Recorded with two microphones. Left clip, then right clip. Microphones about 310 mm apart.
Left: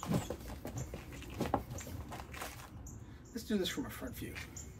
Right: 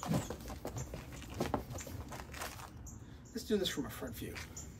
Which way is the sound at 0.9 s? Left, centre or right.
Centre.